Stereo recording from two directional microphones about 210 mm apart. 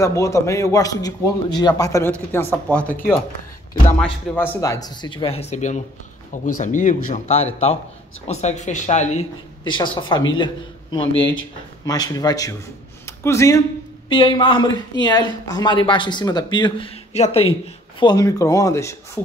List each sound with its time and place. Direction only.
0.0 s a man's voice: 15° left (ahead or behind); by 9.2 s 35° left (ahead or behind)
9.7 s a man's voice: 20° left (ahead or behind)
13.0 s a sound: 10° left (ahead or behind)
14.0 s speech: 25° left (ahead or behind)